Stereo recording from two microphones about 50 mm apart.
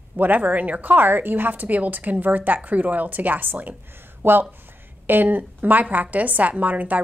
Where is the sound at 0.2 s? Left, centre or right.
Right.